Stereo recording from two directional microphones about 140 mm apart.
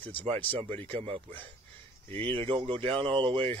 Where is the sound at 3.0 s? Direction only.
40° right (ahead or behind).